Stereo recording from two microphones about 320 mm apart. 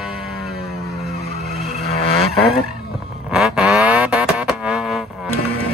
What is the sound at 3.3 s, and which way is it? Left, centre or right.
Vehicle, centre.